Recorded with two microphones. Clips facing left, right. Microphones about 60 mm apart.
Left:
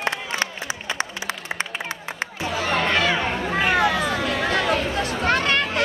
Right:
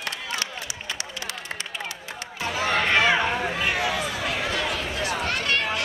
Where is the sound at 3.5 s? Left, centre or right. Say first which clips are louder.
Left 6 dB; left.